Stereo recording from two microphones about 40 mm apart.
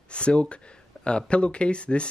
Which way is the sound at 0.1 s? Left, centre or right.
Left.